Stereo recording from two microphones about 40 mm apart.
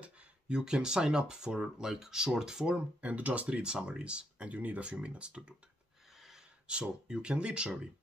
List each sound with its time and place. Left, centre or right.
0.0 s speech: right
3.0 s speech: right
4.5 s speech: right
5.0 s speech: right
6.1 s a sound: centre
6.7 s speech: right